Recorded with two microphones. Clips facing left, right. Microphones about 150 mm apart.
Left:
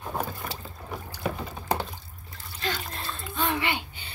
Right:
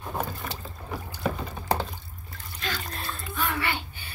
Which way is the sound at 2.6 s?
25° left (ahead or behind).